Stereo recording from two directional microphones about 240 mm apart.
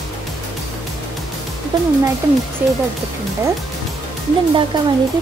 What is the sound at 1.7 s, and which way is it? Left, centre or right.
Speech, centre.